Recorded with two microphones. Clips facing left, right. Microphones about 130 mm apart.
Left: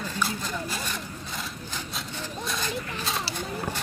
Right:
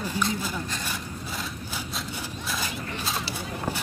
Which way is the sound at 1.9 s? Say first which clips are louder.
Even; 5° right (ahead or behind).